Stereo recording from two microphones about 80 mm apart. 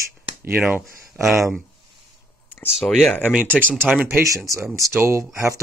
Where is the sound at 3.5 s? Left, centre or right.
Centre.